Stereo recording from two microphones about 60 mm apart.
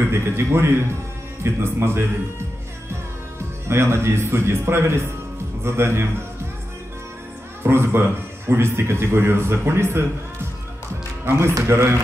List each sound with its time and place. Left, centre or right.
0.1 s a man's voice: right
3.6 s a man's voice: right
7.6 s a man's voice: right
11.2 s a man's voice: right